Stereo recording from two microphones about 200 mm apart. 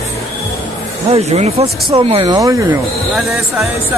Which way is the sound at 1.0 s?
30° right (ahead or behind).